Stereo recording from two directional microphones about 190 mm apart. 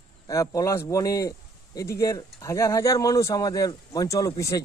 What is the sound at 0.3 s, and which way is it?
A man's voice, 15° left (ahead or behind).